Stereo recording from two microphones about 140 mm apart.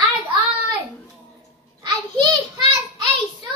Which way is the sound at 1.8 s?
35° right (ahead or behind).